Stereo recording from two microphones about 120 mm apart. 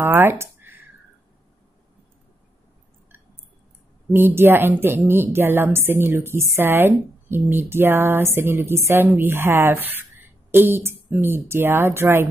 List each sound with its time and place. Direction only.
0.0 s speech: 20° right (ahead or behind)
4.1 s speech: 20° right (ahead or behind)